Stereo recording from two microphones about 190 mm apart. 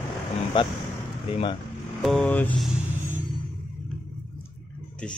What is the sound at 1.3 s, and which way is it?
Speech, 25° left (ahead or behind).